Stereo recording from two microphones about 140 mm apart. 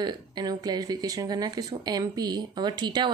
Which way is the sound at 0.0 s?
30° right (ahead or behind).